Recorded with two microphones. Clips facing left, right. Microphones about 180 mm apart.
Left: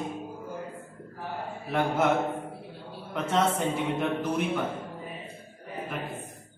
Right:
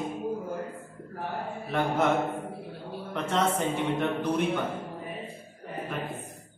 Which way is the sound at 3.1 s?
5° left (ahead or behind).